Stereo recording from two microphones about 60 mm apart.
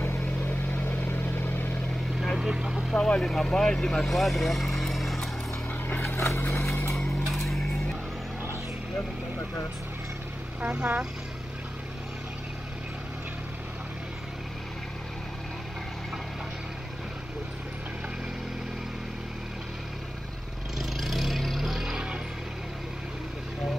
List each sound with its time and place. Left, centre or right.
0.2 s vehicle: left
2.3 s speech: centre
2.9 s speech: centre
4.2 s vehicle: centre
6.0 s vehicle: left
7.2 s mechanisms: centre
10.6 s speech: centre
20.7 s vehicle: centre